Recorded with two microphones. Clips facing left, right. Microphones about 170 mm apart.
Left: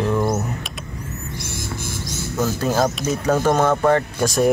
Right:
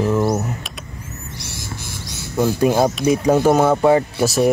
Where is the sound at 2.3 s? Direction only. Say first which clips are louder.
Right 5 dB; 15° right (ahead or behind).